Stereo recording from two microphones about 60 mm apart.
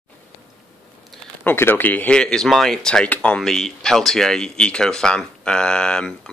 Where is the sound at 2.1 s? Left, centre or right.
Centre.